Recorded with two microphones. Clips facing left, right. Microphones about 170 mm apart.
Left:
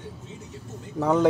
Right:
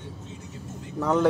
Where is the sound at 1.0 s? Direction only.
15° left (ahead or behind).